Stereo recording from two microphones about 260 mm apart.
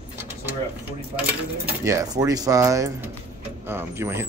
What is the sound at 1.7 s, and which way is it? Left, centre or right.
Speech, centre.